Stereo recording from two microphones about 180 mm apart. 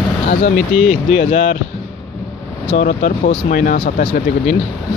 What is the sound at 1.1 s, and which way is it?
Speech, 35° left (ahead or behind).